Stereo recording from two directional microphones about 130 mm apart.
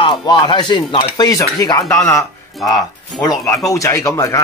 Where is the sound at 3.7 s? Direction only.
25° left (ahead or behind).